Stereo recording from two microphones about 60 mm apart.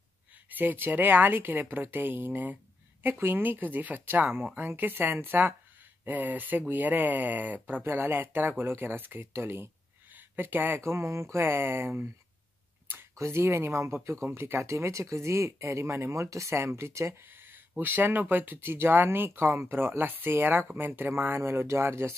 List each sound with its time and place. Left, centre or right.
0.5 s speech: right
10.8 s speech: right
13.2 s speech: right
14.3 s speech: right
14.6 s speech: right
17.2 s speech: right